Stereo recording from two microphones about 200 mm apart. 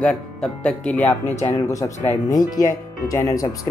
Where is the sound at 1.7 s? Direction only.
15° left (ahead or behind).